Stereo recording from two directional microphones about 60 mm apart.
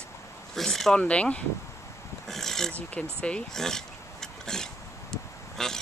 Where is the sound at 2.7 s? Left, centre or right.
Left.